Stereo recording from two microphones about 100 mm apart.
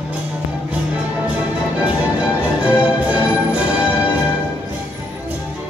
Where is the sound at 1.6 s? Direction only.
10° right (ahead or behind).